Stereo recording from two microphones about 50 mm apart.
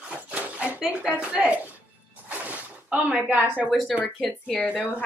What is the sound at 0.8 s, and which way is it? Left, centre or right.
Speech, right.